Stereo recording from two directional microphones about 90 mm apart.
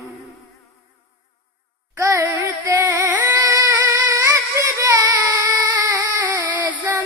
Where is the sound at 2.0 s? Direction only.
30° right (ahead or behind).